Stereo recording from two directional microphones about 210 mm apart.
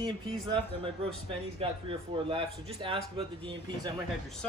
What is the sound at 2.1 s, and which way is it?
Speech, 25° right (ahead or behind).